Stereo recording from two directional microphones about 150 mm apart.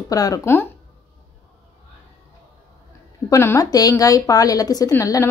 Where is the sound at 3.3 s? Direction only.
20° left (ahead or behind).